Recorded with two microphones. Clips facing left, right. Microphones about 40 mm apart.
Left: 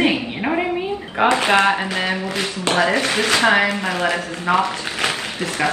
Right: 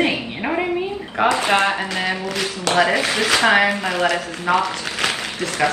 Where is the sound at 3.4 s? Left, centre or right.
Right.